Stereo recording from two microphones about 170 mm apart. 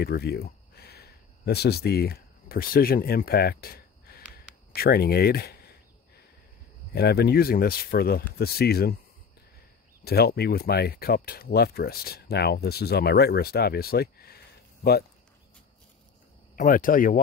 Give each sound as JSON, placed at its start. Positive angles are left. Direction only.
{"t": 0.0, "sound": "speech", "side_deg": 70}
{"t": 4.7, "sound": "a sound", "side_deg": 70}
{"t": 6.9, "sound": "speech", "side_deg": 70}
{"t": 10.0, "sound": "speech", "side_deg": 70}
{"t": 16.5, "sound": "speech", "side_deg": 50}